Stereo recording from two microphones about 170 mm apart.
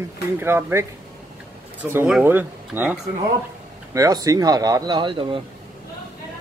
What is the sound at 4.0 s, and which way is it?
A man's voice, 20° right (ahead or behind).